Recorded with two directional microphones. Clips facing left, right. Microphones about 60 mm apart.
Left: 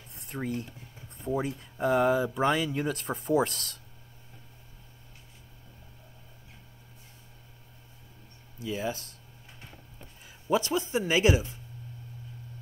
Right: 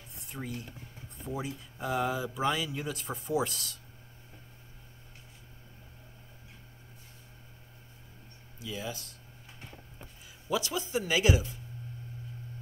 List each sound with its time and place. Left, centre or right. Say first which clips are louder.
0.1 s a sound: left 6 dB; left
1.2 s speech: left 6 dB; left
8.5 s speech: left 6 dB; left
10.2 s a man's voice: left 5 dB; left